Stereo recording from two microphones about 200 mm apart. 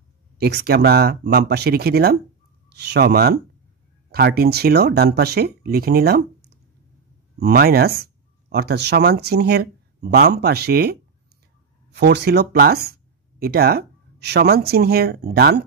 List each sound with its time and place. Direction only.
0.4 s speech: 55° right (ahead or behind)